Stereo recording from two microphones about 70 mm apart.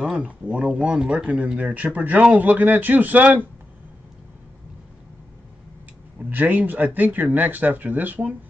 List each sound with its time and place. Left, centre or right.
0.2 s a man's voice: centre
6.3 s a man's voice: right